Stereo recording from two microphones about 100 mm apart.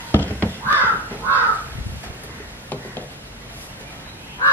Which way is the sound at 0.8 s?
15° right (ahead or behind).